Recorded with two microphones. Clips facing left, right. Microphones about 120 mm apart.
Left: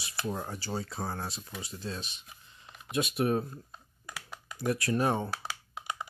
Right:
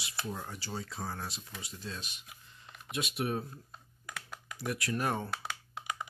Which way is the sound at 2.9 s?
40° left (ahead or behind).